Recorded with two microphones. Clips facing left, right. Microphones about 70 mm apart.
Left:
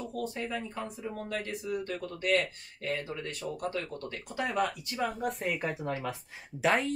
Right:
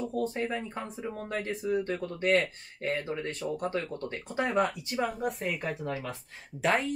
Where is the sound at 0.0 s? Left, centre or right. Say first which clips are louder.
Right 5 dB; right.